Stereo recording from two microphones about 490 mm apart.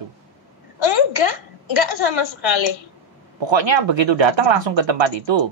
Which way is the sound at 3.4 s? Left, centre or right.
Right.